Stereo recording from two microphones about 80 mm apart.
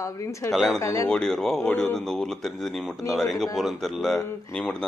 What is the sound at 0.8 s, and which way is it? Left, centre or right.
Speech, left.